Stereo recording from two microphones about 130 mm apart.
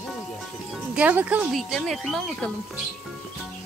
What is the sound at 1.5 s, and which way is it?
A woman's voice, centre (ahead or behind).